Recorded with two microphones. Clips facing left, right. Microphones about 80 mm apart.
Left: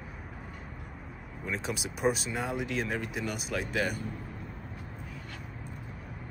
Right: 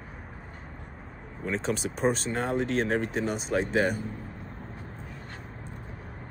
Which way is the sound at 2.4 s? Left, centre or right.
Right.